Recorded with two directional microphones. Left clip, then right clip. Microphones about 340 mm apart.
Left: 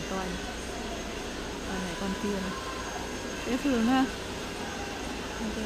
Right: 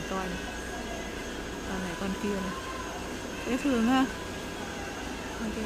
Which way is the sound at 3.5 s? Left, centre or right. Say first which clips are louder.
Even; centre.